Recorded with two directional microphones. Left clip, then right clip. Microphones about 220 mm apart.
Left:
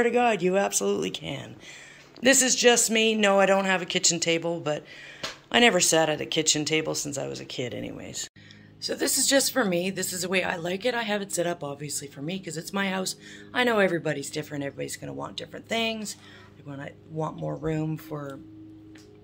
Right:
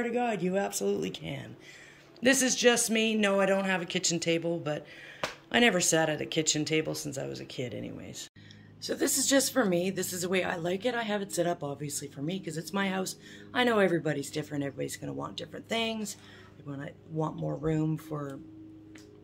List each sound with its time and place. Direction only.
0.0 s a woman's voice: centre (ahead or behind)